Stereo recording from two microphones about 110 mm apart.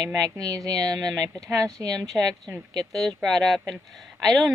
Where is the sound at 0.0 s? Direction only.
35° right (ahead or behind).